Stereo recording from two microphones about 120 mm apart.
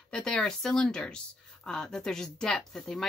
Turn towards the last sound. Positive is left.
turn(degrees=0)  # may be behind; listen again after turning